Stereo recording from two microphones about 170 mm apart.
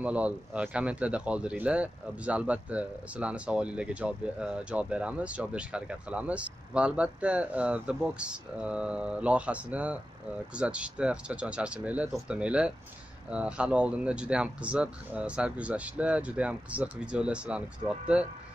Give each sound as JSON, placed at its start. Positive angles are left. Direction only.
{"t": 0.0, "sound": "speech", "side_deg": -10}